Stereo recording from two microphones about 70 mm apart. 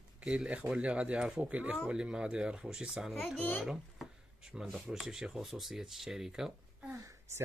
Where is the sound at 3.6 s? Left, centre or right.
Centre.